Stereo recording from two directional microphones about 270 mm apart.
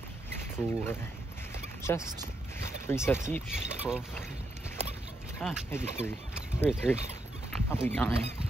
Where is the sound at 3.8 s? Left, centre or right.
Centre.